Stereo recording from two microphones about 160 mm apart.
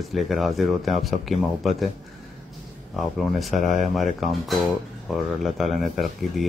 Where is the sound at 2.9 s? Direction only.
Centre (ahead or behind).